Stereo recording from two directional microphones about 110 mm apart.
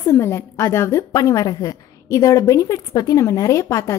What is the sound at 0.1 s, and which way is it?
A woman's voice, 25° left (ahead or behind).